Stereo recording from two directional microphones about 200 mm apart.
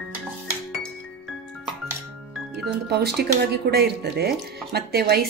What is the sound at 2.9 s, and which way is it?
A woman's voice, 55° right (ahead or behind).